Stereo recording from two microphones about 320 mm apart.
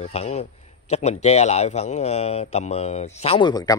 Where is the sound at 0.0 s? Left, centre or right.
Left.